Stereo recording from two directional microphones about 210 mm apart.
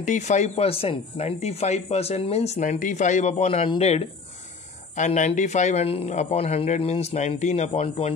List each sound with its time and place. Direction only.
0.0 s speech: 35° left (ahead or behind)